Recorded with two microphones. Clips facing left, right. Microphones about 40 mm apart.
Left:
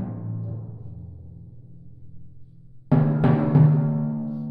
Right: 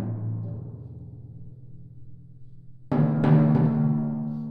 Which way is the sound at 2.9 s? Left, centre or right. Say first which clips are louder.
Left 1 dB; centre.